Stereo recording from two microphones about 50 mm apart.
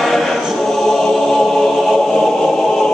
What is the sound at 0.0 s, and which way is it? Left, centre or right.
Choir, centre.